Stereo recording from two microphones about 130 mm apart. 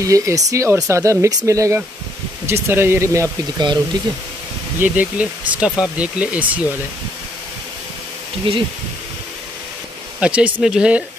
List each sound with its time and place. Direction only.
0.0 s speech: 25° right (ahead or behind)
4.8 s speech: 10° right (ahead or behind)
8.5 s speech: 40° right (ahead or behind)
10.2 s speech: 10° right (ahead or behind)